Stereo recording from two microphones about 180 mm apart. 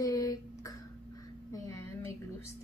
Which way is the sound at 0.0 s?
20° left (ahead or behind).